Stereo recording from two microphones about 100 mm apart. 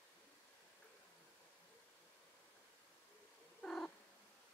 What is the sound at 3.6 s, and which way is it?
Cat, 10° left (ahead or behind).